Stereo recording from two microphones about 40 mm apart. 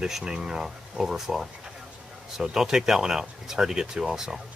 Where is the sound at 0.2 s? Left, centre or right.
Centre.